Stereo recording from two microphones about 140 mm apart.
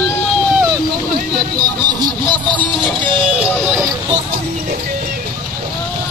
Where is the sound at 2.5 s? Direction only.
35° right (ahead or behind).